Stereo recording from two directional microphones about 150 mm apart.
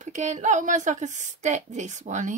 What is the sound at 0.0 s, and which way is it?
Speech, 55° right (ahead or behind).